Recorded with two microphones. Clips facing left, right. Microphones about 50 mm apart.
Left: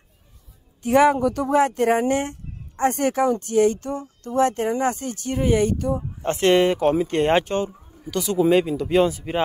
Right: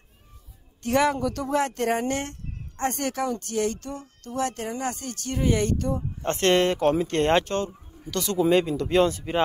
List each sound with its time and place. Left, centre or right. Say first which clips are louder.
0.8 s speech: left 6 dB; centre